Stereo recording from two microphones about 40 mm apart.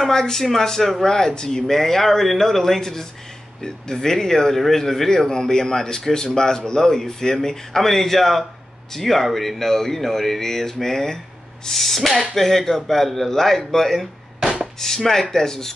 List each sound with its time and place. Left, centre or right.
0.0 s speech: centre
14.4 s chopping: right
14.8 s speech: centre